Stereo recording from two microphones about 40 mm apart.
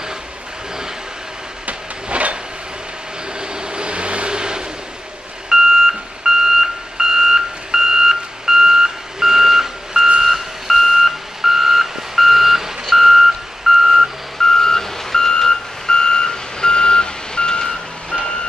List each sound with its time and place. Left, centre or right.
1.7 s train: right
3.3 s vehicle: right
5.5 s reversing beeps: centre
10.2 s reversing beeps: centre
14.4 s reversing beeps: centre